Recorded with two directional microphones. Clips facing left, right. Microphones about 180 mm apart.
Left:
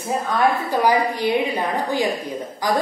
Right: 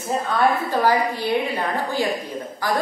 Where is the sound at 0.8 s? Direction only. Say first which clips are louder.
Left 3 dB; 15° left (ahead or behind).